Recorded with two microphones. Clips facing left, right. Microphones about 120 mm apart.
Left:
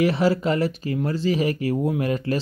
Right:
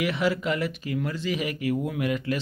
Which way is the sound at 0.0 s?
35° left (ahead or behind).